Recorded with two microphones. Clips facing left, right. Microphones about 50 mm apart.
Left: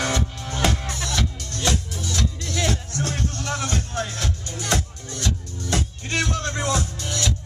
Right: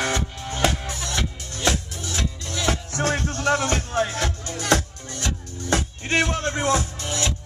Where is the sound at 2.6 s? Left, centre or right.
Right.